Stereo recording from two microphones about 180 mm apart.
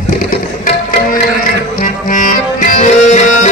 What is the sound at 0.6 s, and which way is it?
Music, 50° left (ahead or behind).